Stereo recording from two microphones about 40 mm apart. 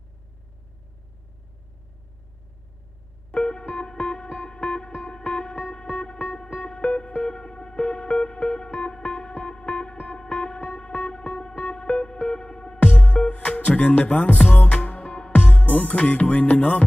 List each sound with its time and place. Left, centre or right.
3.3 s music: left
12.8 s music: left